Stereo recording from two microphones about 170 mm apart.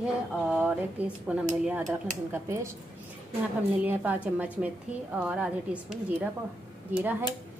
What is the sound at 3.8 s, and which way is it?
Speech, 10° right (ahead or behind).